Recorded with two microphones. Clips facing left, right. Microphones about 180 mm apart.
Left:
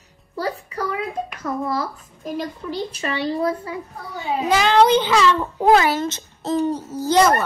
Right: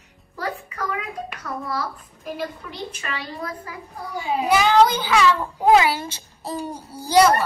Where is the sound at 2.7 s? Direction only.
35° left (ahead or behind).